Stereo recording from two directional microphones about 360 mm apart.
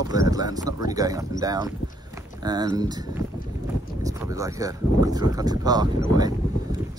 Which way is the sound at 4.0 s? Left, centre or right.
Centre.